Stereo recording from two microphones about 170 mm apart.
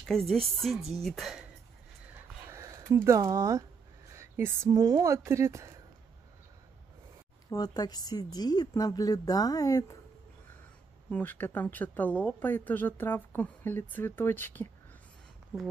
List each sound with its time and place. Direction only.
0.1 s speech: centre (ahead or behind)
2.5 s speech: 20° right (ahead or behind)
7.4 s a woman's voice: 20° left (ahead or behind)
11.1 s speech: 10° left (ahead or behind)
15.5 s speech: 10° right (ahead or behind)